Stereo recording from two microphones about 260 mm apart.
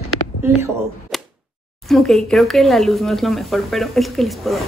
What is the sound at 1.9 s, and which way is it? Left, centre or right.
Speech, centre.